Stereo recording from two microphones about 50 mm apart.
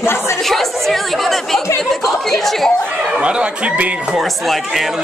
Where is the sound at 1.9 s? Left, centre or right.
Centre.